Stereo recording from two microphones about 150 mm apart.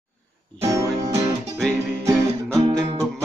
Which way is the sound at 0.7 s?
20° right (ahead or behind).